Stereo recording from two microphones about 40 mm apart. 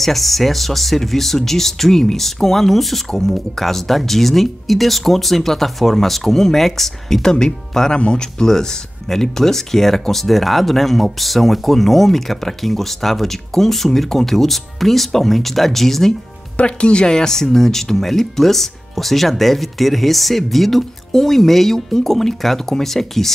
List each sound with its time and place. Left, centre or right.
0.0 s speech: centre
16.5 s speech: left; by 23.3 s centre